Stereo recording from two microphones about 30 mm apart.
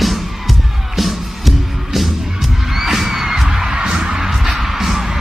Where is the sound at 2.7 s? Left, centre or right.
Centre.